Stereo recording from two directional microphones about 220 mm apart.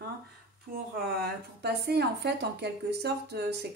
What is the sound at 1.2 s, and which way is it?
A woman's voice, 50° right (ahead or behind).